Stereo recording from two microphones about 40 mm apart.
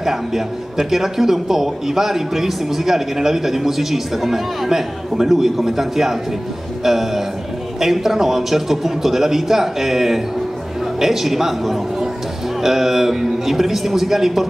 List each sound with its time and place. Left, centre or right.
0.0 s speech: centre